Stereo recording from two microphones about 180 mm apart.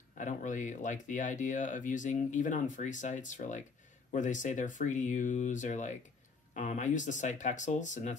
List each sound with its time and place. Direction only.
0.2 s speech: 45° left (ahead or behind)